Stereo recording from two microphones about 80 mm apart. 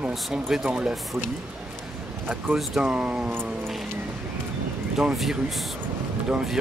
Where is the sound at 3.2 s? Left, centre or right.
Right.